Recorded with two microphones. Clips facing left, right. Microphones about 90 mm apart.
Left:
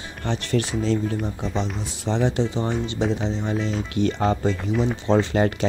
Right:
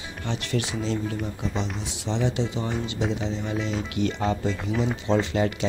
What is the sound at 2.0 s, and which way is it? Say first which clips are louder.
Speech: left 4 dB; 40° left (ahead or behind).